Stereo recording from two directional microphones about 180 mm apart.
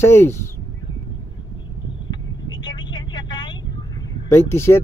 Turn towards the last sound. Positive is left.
turn(degrees=15)  # may be behind; listen again after turning